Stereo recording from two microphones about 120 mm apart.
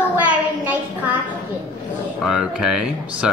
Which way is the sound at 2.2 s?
5° right (ahead or behind).